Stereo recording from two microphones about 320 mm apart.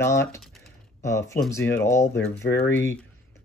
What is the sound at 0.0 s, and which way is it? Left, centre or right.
Speech, centre.